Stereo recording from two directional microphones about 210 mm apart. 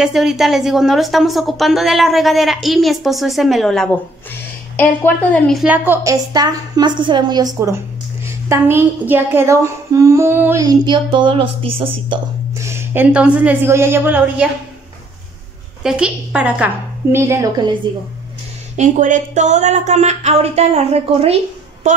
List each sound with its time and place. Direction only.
0.0 s a woman's voice: centre (ahead or behind)
4.7 s humming: 10° left (ahead or behind); by 12.2 s 25° right (ahead or behind)
12.5 s humming: 15° right (ahead or behind)
15.8 s humming: 5° right (ahead or behind)
18.8 s a woman's voice: 35° right (ahead or behind)